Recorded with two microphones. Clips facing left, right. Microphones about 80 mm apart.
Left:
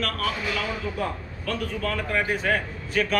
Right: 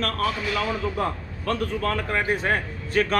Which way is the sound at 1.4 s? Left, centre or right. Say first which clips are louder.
Right 3 dB; right.